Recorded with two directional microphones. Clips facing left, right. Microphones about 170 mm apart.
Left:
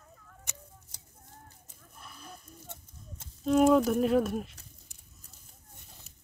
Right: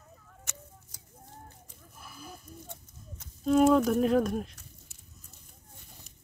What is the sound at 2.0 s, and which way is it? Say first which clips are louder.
Livestock: right 2 dB; 5° right (ahead or behind).